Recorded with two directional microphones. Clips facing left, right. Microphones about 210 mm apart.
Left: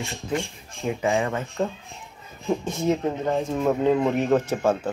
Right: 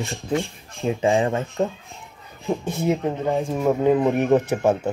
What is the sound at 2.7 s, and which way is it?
Speech, 15° right (ahead or behind).